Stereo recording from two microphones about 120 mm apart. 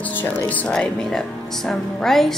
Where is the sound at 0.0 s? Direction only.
15° left (ahead or behind).